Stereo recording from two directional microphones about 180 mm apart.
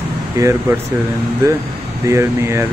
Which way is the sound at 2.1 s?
15° right (ahead or behind).